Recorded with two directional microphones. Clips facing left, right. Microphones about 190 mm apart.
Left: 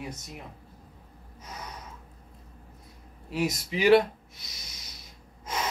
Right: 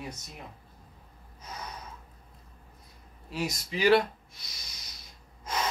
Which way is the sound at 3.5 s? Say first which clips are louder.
Left 3 dB; 25° left (ahead or behind).